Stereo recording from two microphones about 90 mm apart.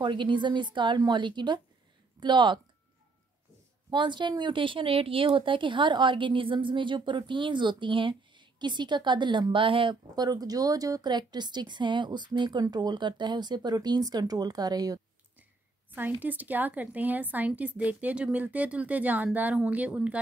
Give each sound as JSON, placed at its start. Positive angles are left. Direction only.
{"t": 0.0, "sound": "speech", "side_deg": -60}
{"t": 3.9, "sound": "speech", "side_deg": -60}
{"t": 10.1, "sound": "a woman's voice", "side_deg": -45}
{"t": 15.9, "sound": "a woman's voice", "side_deg": -20}